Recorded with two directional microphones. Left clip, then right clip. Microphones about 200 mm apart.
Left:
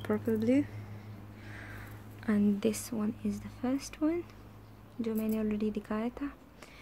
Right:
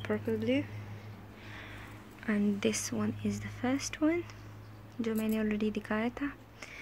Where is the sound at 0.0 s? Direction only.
25° left (ahead or behind).